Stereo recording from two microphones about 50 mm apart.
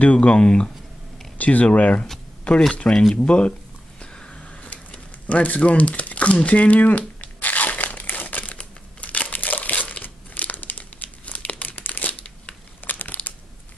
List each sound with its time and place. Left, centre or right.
0.0 s speech: left
1.4 s speech: left
4.0 s a sound: centre; by 8.5 s left
8.5 s crumpling: left